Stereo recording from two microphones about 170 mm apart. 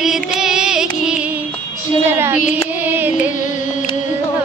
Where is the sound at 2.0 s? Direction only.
15° right (ahead or behind).